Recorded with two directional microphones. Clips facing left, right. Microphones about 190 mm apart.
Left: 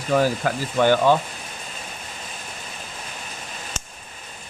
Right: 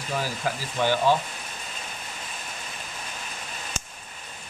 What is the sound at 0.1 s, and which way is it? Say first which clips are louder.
Speech: left 9 dB; 55° left (ahead or behind).